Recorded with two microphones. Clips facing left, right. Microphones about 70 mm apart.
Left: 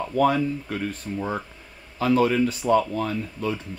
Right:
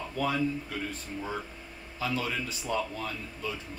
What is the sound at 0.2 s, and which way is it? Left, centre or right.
Speech, left.